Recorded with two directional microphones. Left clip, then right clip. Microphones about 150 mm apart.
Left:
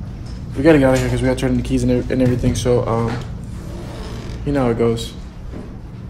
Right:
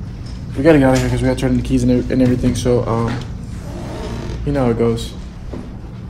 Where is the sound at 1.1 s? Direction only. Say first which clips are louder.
Right 1 dB; 15° left (ahead or behind).